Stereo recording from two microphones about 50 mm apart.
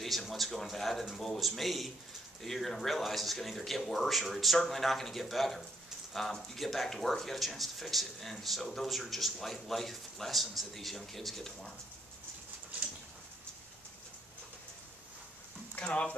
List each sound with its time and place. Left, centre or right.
0.0 s speech: centre
15.7 s speech: left